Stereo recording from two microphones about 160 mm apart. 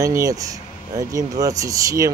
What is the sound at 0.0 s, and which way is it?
Speech, 20° right (ahead or behind).